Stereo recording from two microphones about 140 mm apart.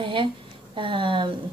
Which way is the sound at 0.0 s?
35° right (ahead or behind).